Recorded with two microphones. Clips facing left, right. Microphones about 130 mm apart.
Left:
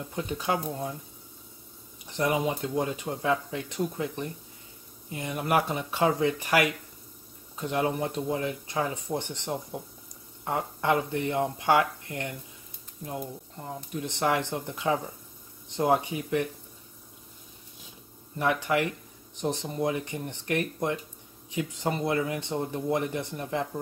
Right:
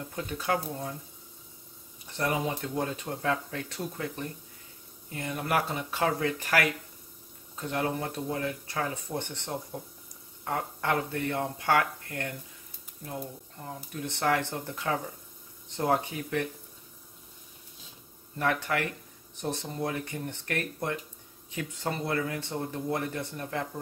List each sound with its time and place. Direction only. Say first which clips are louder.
0.1 s speech: left 1 dB; 20° left (ahead or behind)
2.0 s speech: left 3 dB; 15° left (ahead or behind)
18.4 s speech: left 3 dB; 15° left (ahead or behind)